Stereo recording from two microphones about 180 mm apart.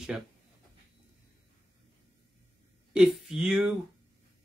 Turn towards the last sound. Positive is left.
turn(degrees=-5)  # may be behind; listen again after turning